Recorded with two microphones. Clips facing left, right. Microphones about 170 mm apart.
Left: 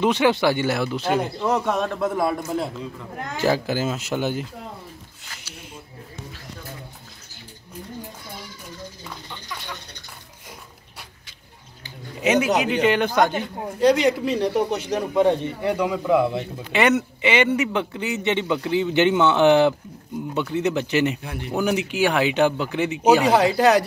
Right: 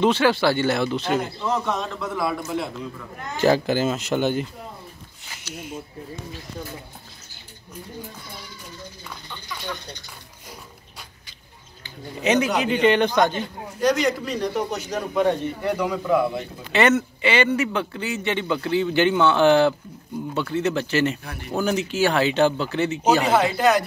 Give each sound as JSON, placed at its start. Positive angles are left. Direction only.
{"t": 0.0, "sound": "speech", "side_deg": 15}
{"t": 1.7, "sound": "a man's voice", "side_deg": 50}
{"t": 3.3, "sound": "speech", "side_deg": 5}
{"t": 12.2, "sound": "speech", "side_deg": 5}
{"t": 13.7, "sound": "a man's voice", "side_deg": 25}
{"t": 23.3, "sound": "speech", "side_deg": 35}